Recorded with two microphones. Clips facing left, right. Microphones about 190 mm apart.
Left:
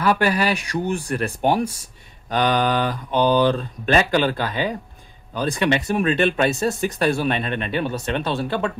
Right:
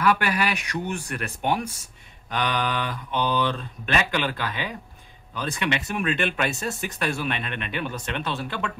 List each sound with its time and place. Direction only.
0.0 s speech: 30° left (ahead or behind)